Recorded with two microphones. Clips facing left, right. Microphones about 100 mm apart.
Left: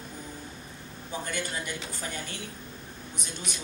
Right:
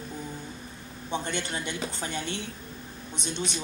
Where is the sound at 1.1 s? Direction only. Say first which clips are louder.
Right 3 dB; 25° right (ahead or behind).